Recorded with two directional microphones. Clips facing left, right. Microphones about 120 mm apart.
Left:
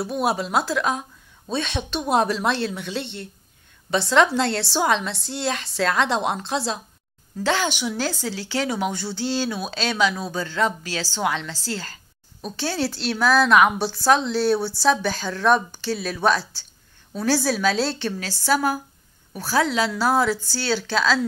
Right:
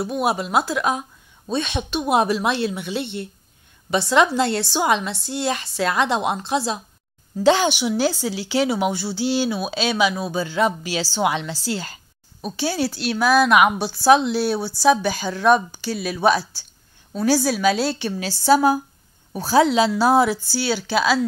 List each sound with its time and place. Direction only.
0.0 s a woman's voice: centre (ahead or behind)
7.4 s a woman's voice: 20° right (ahead or behind)
7.8 s a woman's voice: 10° right (ahead or behind)